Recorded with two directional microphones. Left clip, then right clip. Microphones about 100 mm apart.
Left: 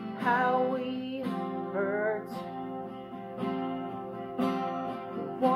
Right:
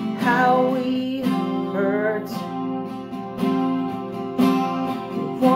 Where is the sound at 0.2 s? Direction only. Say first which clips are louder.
Right 8 dB; centre (ahead or behind).